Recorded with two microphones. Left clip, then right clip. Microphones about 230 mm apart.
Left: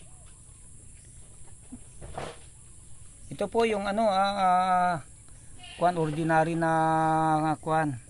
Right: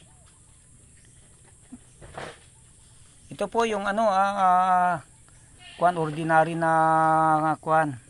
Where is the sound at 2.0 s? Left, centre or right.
Right.